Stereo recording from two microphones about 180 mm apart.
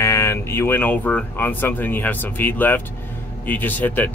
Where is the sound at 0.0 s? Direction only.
15° left (ahead or behind).